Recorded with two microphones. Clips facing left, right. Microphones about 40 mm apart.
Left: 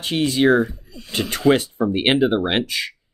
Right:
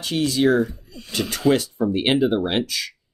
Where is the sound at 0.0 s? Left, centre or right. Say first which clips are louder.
Left 2 dB; left.